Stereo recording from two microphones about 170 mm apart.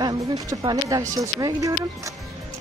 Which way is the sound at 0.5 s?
20° right (ahead or behind).